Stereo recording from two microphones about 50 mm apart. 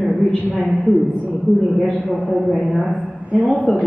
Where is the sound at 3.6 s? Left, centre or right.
Centre.